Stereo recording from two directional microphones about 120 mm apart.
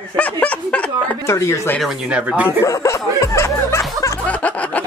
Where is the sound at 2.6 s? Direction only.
25° left (ahead or behind).